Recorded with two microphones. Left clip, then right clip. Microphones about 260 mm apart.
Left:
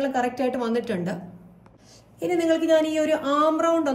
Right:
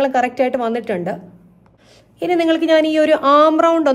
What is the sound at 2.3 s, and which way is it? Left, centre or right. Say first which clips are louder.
A woman's voice: right 6 dB; centre.